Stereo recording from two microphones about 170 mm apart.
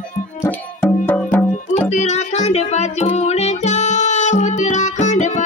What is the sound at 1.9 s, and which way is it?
Music, 45° left (ahead or behind).